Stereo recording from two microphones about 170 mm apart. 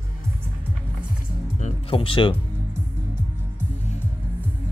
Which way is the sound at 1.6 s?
35° left (ahead or behind).